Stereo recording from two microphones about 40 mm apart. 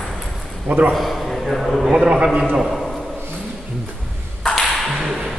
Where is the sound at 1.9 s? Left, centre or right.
Right.